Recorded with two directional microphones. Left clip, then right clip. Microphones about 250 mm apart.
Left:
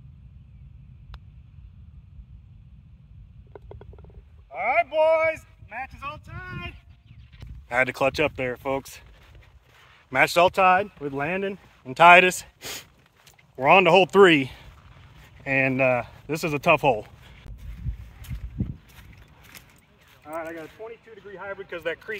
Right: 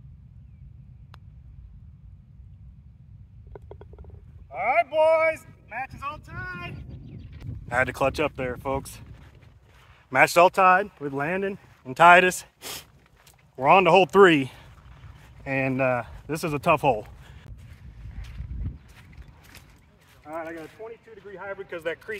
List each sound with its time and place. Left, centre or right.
3.5 s a sound: centre
4.5 s speech: centre
7.6 s speech: centre
10.0 s speech: right; by 17.5 s centre
20.2 s speech: centre